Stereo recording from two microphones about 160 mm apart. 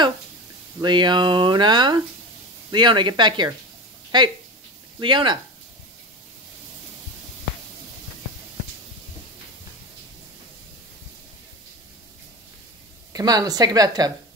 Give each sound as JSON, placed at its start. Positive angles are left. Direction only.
{"t": 0.7, "sound": "speech", "side_deg": -25}
{"t": 13.1, "sound": "speech", "side_deg": -25}